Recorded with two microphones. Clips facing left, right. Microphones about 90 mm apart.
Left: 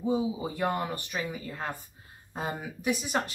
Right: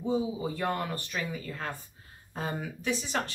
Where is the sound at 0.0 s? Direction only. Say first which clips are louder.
Left 1 dB; 15° left (ahead or behind).